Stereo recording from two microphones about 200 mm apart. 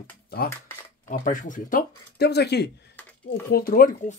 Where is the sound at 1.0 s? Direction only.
40° left (ahead or behind).